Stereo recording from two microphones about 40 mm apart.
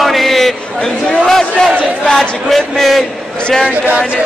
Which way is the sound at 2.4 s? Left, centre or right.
Centre.